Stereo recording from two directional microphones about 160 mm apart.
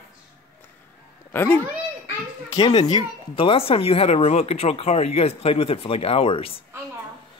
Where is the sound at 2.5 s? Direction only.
30° left (ahead or behind).